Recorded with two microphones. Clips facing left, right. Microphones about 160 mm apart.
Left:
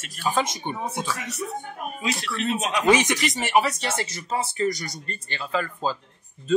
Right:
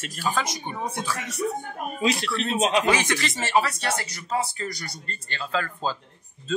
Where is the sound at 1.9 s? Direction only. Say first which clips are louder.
Right 4 dB; 30° right (ahead or behind).